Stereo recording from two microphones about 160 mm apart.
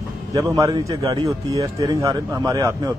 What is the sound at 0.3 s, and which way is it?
Speech, 20° right (ahead or behind).